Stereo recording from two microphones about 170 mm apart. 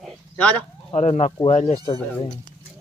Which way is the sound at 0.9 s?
40° left (ahead or behind).